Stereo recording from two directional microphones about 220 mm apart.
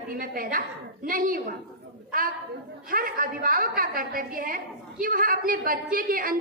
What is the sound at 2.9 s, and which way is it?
A woman's voice, 40° right (ahead or behind).